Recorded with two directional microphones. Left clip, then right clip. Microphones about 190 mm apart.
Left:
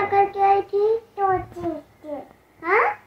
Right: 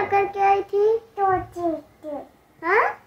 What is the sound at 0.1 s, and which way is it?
Child singing, 15° right (ahead or behind).